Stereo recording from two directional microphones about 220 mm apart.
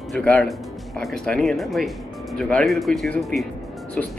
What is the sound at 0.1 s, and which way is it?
Speech, 5° left (ahead or behind).